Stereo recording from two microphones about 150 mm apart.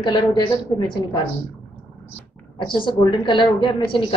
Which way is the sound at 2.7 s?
30° left (ahead or behind).